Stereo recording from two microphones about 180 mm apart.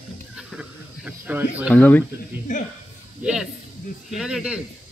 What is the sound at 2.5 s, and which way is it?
Speech, 45° left (ahead or behind).